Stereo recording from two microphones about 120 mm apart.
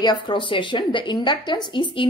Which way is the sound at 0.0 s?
40° left (ahead or behind).